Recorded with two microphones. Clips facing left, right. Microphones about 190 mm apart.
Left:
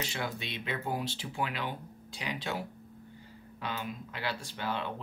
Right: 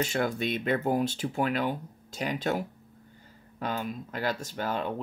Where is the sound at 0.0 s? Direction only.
45° right (ahead or behind).